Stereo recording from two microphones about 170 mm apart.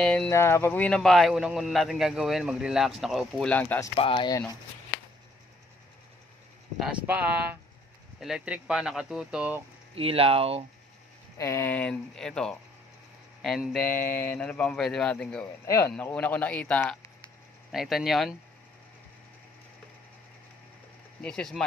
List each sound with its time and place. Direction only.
0.0 s a man's voice: 5° left (ahead or behind)
3.9 s speech: 30° left (ahead or behind)
6.8 s a man's voice: 10° right (ahead or behind)
9.9 s speech: 35° right (ahead or behind)
11.3 s a man's voice: 15° left (ahead or behind); by 13.8 s centre (ahead or behind)
13.8 s a man's voice: 15° left (ahead or behind)
15.6 s speech: 20° left (ahead or behind)
15.9 s a man's voice: 10° left (ahead or behind)
21.2 s a man's voice: 5° left (ahead or behind)